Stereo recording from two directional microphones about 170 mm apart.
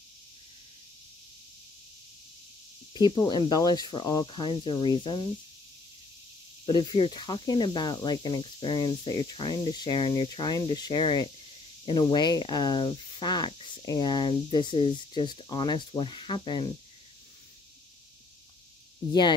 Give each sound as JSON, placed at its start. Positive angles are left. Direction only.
{"t": 2.9, "sound": "speech", "side_deg": 25}
{"t": 6.6, "sound": "speech", "side_deg": 30}